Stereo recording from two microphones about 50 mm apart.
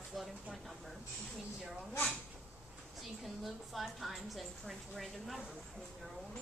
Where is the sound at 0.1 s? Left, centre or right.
Centre.